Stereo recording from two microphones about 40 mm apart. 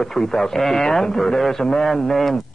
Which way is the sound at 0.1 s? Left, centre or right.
Centre.